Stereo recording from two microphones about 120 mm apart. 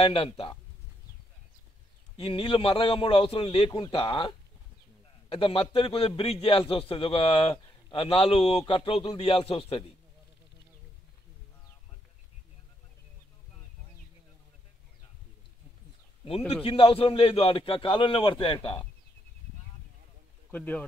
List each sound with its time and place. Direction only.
0.0 s a man's voice: 50° left (ahead or behind)
2.1 s a man's voice: 50° left (ahead or behind)
16.3 s a man's voice: 55° left (ahead or behind)
20.5 s speech: 15° left (ahead or behind)